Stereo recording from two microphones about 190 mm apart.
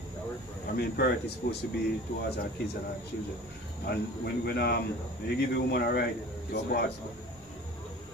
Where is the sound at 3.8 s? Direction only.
60° left (ahead or behind).